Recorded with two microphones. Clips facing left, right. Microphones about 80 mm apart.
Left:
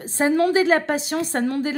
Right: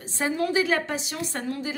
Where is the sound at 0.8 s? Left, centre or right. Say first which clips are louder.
Left 8 dB; left.